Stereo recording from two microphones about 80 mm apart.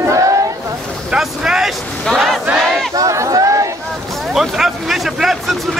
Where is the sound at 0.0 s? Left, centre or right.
Right.